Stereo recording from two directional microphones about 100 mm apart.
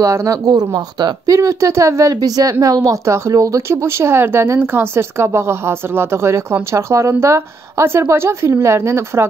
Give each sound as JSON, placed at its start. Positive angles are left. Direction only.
{"t": 0.0, "sound": "a woman's voice", "side_deg": -35}